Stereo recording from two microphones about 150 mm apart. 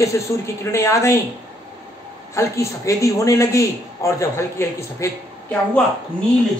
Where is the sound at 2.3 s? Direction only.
20° left (ahead or behind).